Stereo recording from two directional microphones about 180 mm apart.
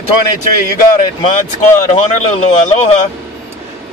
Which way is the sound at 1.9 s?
40° left (ahead or behind).